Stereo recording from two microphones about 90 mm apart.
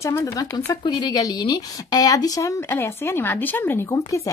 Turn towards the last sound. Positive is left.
turn(degrees=40)  # may be behind; listen again after turning